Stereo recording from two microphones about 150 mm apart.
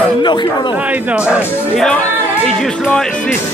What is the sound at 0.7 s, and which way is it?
Speech, 10° right (ahead or behind).